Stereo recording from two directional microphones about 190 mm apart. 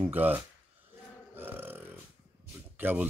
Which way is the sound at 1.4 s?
10° right (ahead or behind).